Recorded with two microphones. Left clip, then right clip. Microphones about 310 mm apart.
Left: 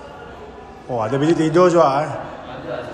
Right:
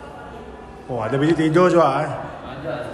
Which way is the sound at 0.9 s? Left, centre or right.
Centre.